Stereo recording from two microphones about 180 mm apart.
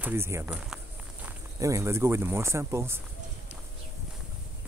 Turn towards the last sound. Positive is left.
turn(degrees=-15)  # may be behind; listen again after turning